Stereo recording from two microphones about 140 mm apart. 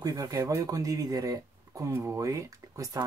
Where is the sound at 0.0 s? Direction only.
25° right (ahead or behind).